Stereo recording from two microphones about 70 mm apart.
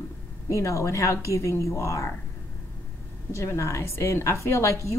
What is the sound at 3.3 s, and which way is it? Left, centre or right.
Speech, left.